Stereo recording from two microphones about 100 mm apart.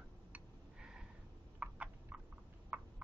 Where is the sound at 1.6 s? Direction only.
15° right (ahead or behind).